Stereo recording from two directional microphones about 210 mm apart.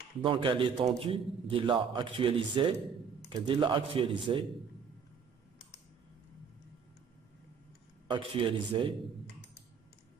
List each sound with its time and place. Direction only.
0.2 s a man's voice: 25° right (ahead or behind)
8.1 s a man's voice: 25° right (ahead or behind)